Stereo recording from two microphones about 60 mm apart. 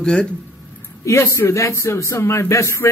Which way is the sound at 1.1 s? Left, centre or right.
Left.